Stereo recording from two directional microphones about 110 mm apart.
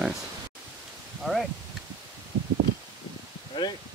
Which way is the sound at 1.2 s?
Centre (ahead or behind).